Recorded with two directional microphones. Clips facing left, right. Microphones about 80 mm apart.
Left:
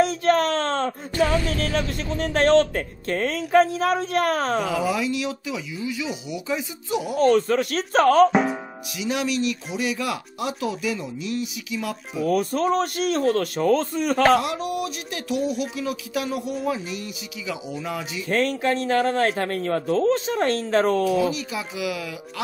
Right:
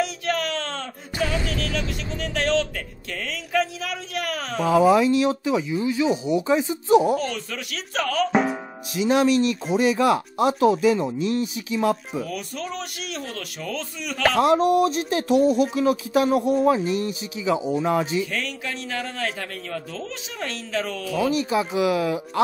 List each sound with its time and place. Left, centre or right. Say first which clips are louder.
0.0 s speech: left 6 dB; left
4.6 s speech: right 7 dB; right
7.2 s speech: left 11 dB; left
8.3 s music: even; centre
8.9 s speech: right 6 dB; right
12.3 s speech: left 10 dB; left
14.4 s speech: right 9 dB; right
18.3 s a man's voice: left 8 dB; left
21.2 s speech: right 3 dB; right